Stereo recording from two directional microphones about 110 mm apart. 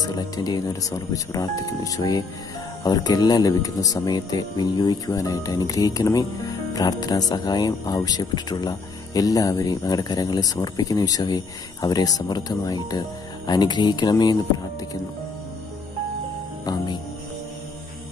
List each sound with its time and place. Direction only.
0.0 s speech: 35° left (ahead or behind)
16.6 s speech: 35° left (ahead or behind)